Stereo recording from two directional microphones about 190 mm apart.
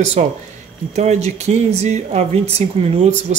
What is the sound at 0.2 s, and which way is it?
Speech, 35° right (ahead or behind).